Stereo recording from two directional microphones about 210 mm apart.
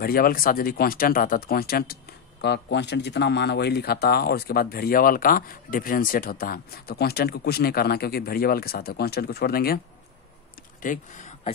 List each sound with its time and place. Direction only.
0.0 s speech: 45° left (ahead or behind)
10.8 s speech: 35° left (ahead or behind)